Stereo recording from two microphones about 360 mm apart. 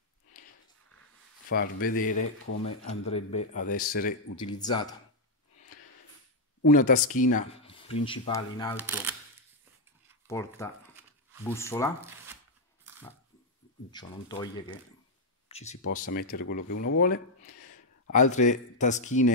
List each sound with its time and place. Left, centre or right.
1.5 s speech: left
2.2 s speech: left
3.1 s speech: centre
4.4 s speech: centre
6.6 s speech: left
8.8 s speech: centre
10.2 s speech: centre
13.9 s speech: centre
16.6 s speech: left
17.0 s speech: left
17.6 s a sound: left
18.3 s speech: centre